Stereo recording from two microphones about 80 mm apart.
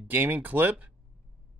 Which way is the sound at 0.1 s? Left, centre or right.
Right.